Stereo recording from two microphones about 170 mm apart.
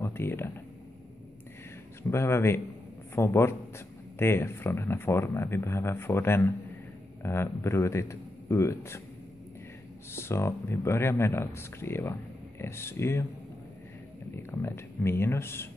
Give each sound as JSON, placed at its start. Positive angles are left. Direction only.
{"t": 0.0, "sound": "a sound", "side_deg": 15}
{"t": 2.0, "sound": "a man's voice", "side_deg": 15}
{"t": 10.1, "sound": "a man's voice", "side_deg": 15}
{"t": 14.3, "sound": "a man's voice", "side_deg": 15}